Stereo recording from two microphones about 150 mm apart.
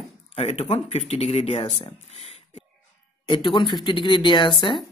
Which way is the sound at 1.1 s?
45° left (ahead or behind).